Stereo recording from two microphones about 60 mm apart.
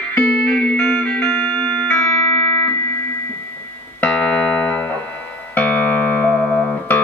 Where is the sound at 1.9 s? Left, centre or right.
Left.